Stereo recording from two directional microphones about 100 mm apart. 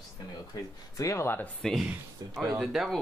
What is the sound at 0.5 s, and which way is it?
Speech, 35° left (ahead or behind).